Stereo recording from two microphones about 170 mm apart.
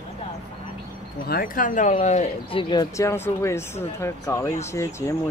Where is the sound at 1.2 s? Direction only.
60° left (ahead or behind); by 2.6 s 40° left (ahead or behind).